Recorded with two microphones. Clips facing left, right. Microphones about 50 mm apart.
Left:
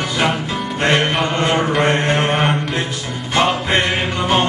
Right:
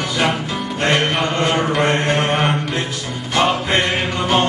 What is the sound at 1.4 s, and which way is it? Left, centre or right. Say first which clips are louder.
Mantra: left 1 dB; centre.